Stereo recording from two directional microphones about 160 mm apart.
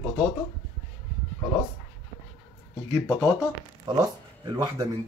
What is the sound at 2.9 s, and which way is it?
Speech, centre (ahead or behind).